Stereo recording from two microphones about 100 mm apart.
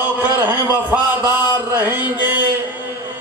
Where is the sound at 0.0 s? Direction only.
20° right (ahead or behind).